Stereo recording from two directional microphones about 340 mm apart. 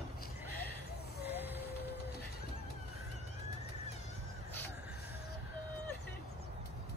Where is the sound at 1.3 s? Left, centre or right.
Centre.